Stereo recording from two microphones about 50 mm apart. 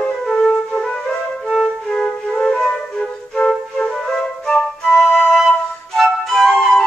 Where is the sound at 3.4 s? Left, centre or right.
Centre.